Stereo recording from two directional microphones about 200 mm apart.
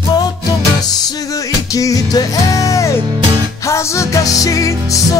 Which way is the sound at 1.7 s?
15° left (ahead or behind).